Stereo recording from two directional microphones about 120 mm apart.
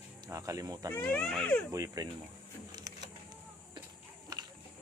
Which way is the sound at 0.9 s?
10° left (ahead or behind).